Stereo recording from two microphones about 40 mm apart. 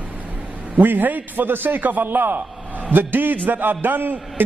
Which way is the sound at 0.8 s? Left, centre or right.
Right.